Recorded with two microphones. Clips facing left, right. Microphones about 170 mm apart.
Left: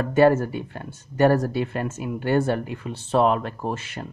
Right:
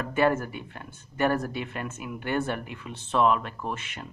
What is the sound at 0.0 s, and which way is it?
Speech, 35° left (ahead or behind).